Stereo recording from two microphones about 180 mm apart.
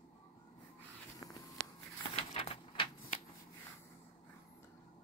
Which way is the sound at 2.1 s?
30° left (ahead or behind).